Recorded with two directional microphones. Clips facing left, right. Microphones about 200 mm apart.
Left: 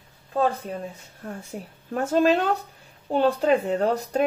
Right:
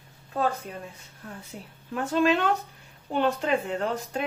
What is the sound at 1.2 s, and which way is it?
A woman's voice, 45° left (ahead or behind).